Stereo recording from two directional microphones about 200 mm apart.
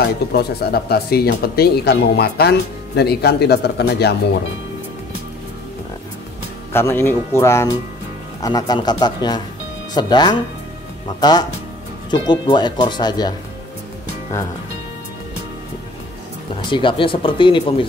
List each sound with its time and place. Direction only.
0.0 s speech: 55° left (ahead or behind)
6.7 s speech: 10° left (ahead or behind)
16.7 s speech: 25° left (ahead or behind)